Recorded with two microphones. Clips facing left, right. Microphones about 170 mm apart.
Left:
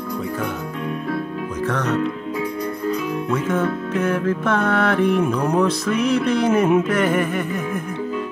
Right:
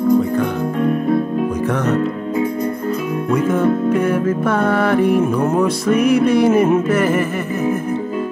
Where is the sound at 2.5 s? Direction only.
50° right (ahead or behind).